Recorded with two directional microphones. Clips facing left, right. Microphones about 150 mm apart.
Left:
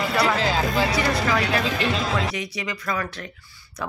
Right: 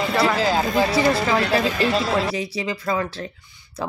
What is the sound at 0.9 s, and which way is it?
A woman's voice, 30° right (ahead or behind).